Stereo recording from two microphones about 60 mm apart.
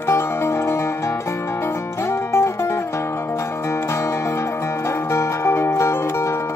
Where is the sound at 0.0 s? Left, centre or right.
Left.